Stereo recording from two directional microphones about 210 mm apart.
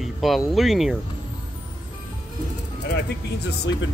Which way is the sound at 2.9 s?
50° left (ahead or behind).